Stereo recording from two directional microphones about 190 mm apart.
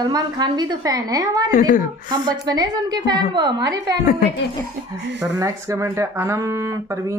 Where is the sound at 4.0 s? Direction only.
45° left (ahead or behind).